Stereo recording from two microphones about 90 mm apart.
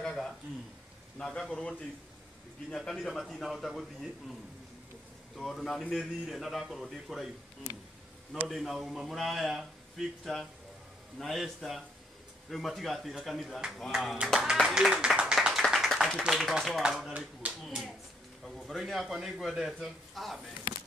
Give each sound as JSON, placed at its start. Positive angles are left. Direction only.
{"t": 0.0, "sound": "a sound", "side_deg": 5}
{"t": 1.1, "sound": "a man's voice", "side_deg": 10}
{"t": 5.3, "sound": "a man's voice", "side_deg": 0}
{"t": 8.3, "sound": "a man's voice", "side_deg": 0}
{"t": 16.8, "sound": "speech", "side_deg": -10}
{"t": 17.6, "sound": "a sound", "side_deg": 0}
{"t": 18.7, "sound": "a man's voice", "side_deg": 0}